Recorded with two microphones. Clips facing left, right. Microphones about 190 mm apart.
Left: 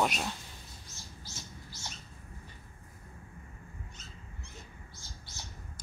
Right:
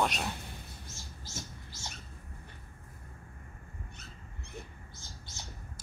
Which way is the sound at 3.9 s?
60° right (ahead or behind).